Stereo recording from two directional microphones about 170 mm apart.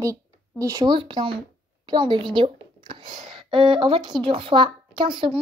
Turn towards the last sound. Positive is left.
turn(degrees=-30)  # may be behind; listen again after turning